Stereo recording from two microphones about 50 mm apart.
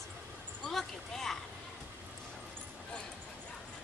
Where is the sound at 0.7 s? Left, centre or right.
Centre.